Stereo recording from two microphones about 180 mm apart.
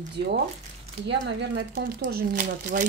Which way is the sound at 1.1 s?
75° right (ahead or behind).